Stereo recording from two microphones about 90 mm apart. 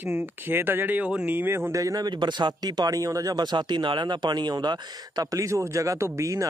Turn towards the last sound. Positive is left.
turn(degrees=-35)  # may be behind; listen again after turning